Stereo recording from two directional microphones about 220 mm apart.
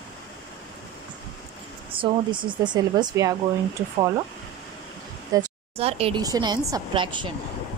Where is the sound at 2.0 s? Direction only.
20° right (ahead or behind).